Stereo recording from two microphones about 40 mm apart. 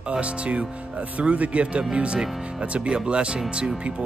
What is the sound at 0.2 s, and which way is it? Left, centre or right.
Speech, right.